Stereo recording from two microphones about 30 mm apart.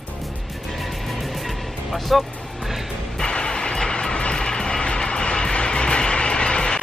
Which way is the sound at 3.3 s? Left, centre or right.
Left.